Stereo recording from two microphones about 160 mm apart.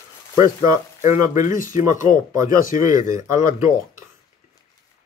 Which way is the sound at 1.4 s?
55° left (ahead or behind).